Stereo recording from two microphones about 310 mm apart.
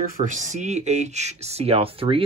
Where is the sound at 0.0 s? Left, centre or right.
Right.